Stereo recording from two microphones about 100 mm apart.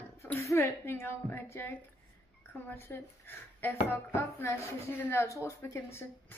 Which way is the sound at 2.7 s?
25° left (ahead or behind).